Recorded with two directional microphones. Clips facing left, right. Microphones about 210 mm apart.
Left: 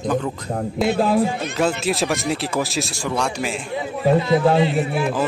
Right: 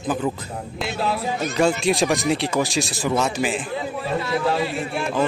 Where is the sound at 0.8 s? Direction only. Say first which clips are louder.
Left 7 dB; 50° left (ahead or behind).